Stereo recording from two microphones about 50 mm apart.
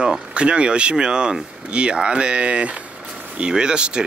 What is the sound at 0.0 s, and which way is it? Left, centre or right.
Speech, centre.